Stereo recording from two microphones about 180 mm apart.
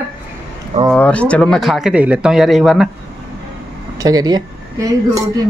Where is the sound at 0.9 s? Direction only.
5° left (ahead or behind).